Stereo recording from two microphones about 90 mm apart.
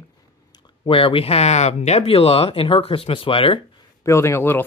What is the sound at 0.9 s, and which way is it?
Speech, 80° left.